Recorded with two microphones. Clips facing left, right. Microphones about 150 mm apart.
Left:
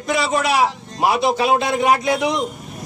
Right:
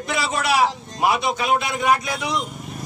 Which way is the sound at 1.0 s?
30° left (ahead or behind).